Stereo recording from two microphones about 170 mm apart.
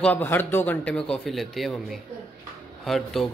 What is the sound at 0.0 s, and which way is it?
A man's voice, 10° left (ahead or behind).